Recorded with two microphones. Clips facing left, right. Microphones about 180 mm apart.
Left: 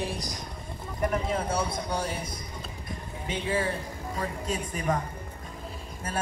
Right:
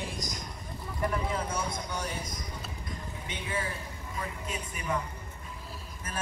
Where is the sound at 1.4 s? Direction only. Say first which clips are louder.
Left 5 dB; 35° left (ahead or behind).